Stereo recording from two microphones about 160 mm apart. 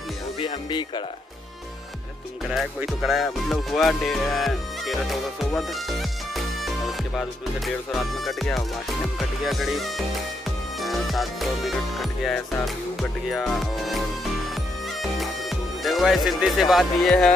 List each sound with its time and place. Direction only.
0.4 s speech: 30° left (ahead or behind)
2.8 s speech: centre (ahead or behind)
14.5 s music: centre (ahead or behind)
15.8 s speech: centre (ahead or behind)